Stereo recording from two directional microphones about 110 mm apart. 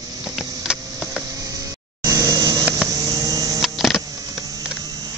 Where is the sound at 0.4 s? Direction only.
Centre (ahead or behind).